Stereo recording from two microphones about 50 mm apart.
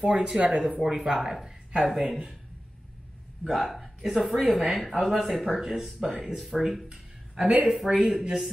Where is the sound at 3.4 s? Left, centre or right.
Centre.